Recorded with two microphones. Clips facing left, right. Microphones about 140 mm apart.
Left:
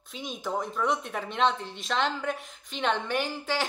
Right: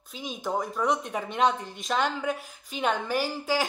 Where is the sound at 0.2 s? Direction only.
Centre (ahead or behind).